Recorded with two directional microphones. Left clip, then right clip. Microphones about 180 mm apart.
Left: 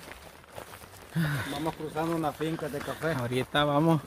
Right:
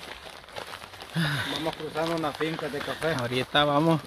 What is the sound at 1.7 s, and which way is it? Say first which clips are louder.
Speech: even; 30° left (ahead or behind).